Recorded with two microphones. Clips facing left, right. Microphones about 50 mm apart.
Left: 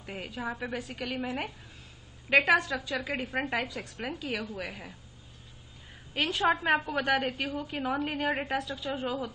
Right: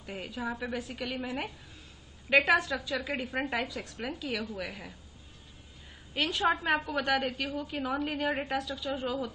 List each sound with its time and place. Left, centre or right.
0.0 s a woman's voice: centre
0.7 s a woman's voice: centre
2.5 s a woman's voice: centre
6.1 s a woman's voice: centre